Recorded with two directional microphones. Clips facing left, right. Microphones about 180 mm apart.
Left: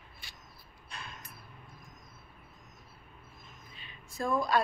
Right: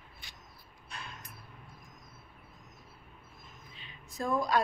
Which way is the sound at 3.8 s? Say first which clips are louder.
Left 1 dB; 20° right (ahead or behind).